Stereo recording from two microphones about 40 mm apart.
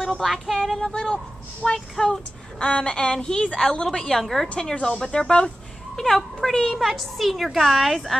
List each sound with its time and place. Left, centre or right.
0.0 s a sound: centre
0.7 s a woman's voice: centre
2.6 s a woman's voice: left
4.2 s a woman's voice: centre
4.8 s a woman's voice: centre
7.4 s speech: centre
7.7 s a woman's voice: centre